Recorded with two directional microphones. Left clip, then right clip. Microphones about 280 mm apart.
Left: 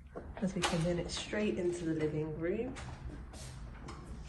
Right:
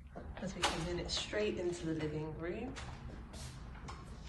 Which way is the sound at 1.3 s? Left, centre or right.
Centre.